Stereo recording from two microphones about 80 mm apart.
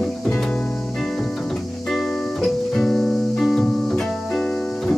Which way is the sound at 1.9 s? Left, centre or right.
Centre.